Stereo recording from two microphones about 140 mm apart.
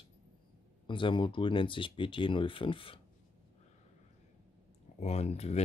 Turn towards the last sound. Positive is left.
turn(degrees=50)  # may be behind; listen again after turning